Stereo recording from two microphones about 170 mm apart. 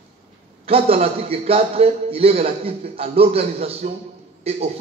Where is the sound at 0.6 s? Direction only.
35° right (ahead or behind).